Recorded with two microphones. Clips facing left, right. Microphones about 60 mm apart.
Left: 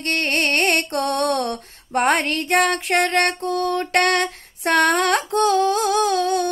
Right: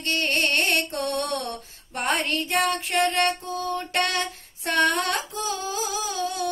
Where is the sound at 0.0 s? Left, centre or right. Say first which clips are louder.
Left 3 dB; left.